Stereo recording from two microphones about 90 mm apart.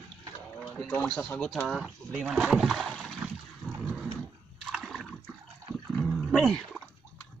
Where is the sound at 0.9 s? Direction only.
10° left (ahead or behind).